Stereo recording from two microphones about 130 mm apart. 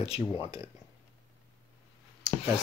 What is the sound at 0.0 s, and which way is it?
Speech, 45° left (ahead or behind).